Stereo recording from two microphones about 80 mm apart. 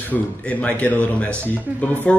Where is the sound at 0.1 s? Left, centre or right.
Centre.